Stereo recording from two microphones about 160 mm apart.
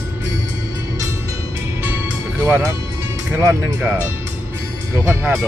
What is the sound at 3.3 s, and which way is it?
Speech, 15° right (ahead or behind).